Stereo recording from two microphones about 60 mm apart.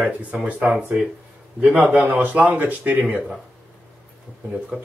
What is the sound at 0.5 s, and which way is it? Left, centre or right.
Speech, right.